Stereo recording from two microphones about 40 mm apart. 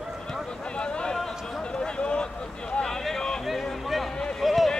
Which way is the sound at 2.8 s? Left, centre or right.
Centre.